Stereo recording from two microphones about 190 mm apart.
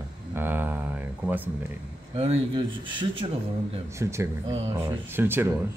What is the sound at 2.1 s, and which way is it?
Speech, 35° right (ahead or behind).